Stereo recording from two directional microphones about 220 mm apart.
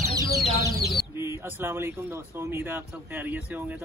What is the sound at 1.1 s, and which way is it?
Speech, 10° right (ahead or behind).